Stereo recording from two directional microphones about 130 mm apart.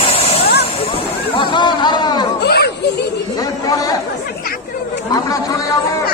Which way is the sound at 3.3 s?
30° left (ahead or behind).